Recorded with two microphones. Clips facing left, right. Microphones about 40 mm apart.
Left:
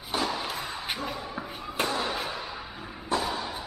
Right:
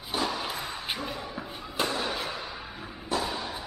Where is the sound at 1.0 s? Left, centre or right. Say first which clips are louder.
Left 1 dB; left.